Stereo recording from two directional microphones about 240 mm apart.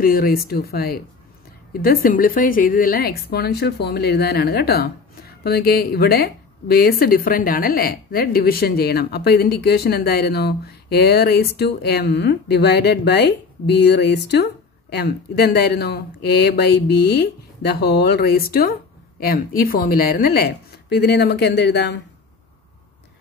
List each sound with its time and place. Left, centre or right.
0.0 s a woman's voice: left